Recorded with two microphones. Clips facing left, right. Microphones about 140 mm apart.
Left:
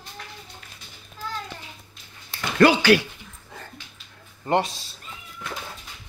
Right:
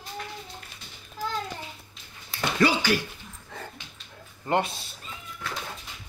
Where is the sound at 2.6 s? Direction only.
70° left (ahead or behind).